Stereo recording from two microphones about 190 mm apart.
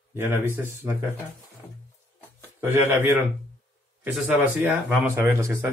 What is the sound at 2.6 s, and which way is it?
A man's voice, 10° right (ahead or behind).